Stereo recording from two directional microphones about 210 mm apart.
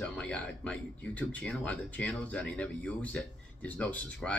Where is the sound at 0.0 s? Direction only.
5° left (ahead or behind).